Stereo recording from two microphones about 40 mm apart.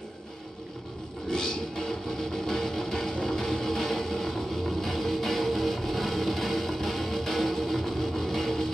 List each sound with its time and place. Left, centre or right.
1.3 s music: centre